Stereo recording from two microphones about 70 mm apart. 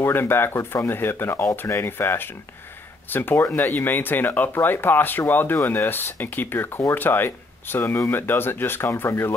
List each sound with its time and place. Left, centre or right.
0.0 s speech: left